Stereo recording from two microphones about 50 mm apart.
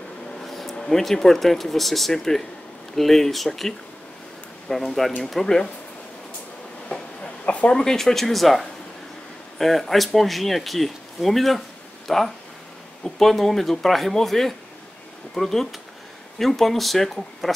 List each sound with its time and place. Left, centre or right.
0.4 s a sound: centre
0.7 s speech: centre
7.4 s speech: left
7.7 s speech: centre